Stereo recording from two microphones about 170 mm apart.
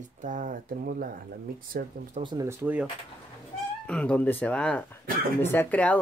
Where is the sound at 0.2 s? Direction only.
50° right (ahead or behind).